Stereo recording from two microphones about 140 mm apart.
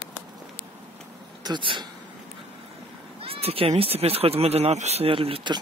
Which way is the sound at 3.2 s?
45° right (ahead or behind).